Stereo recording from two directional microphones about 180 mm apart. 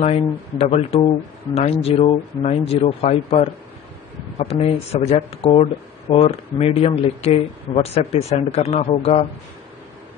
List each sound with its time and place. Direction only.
0.0 s speech: 35° left (ahead or behind)